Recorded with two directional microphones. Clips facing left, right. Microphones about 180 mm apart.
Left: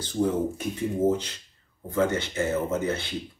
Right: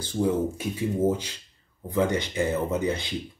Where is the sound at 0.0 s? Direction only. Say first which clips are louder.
Even; 10° right (ahead or behind).